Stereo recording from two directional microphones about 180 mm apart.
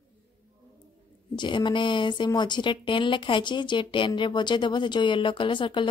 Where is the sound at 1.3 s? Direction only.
25° left (ahead or behind).